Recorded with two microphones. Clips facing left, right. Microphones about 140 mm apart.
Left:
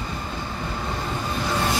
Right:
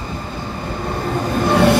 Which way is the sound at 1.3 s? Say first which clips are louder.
Right 12 dB; 60° right (ahead or behind).